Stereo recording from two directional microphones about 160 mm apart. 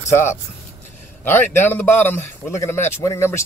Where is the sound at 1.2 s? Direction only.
15° left (ahead or behind).